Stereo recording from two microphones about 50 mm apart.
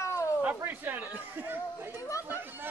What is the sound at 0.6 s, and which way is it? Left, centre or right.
Chatter, right.